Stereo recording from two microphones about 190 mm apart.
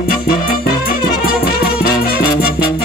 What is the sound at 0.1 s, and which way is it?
Music, 50° left (ahead or behind).